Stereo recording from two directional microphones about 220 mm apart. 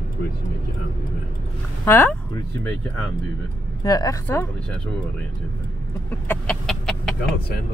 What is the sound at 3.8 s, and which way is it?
Speech, 15° left (ahead or behind).